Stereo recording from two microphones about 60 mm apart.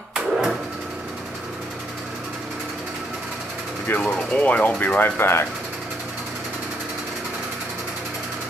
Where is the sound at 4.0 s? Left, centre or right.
Centre.